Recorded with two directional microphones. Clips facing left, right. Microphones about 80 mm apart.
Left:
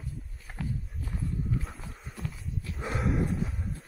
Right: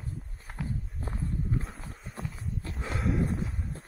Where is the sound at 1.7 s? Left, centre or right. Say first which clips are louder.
Even; centre.